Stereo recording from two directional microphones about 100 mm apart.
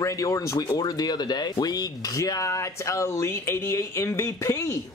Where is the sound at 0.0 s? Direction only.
30° left (ahead or behind).